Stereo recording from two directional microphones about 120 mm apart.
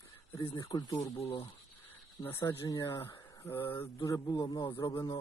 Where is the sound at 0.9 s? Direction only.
55° left (ahead or behind).